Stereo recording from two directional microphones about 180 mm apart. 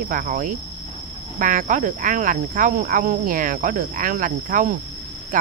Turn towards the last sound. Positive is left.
turn(degrees=-50)  # may be behind; listen again after turning